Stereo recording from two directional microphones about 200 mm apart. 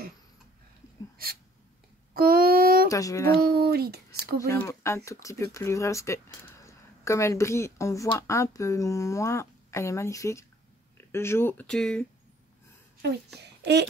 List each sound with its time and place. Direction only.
1.1 s a sound: 45° right (ahead or behind)
2.9 s speech: 15° left (ahead or behind)
3.3 s speech: 50° right (ahead or behind)
4.4 s speech: 15° left (ahead or behind)